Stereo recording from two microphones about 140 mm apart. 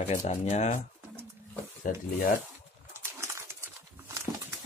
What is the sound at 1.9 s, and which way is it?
Speech, 80° left.